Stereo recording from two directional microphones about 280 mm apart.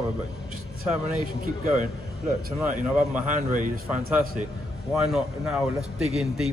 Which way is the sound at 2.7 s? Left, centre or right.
Right.